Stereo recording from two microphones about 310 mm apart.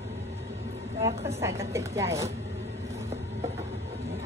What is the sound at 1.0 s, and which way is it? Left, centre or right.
A woman's voice, centre.